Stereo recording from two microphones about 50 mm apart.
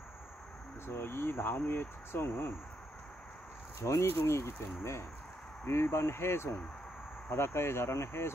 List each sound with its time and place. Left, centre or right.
0.8 s speech: left
3.8 s speech: left
4.2 s speech: left